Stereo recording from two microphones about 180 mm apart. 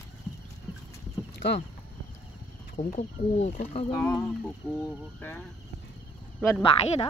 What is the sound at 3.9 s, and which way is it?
Speech, 15° left (ahead or behind).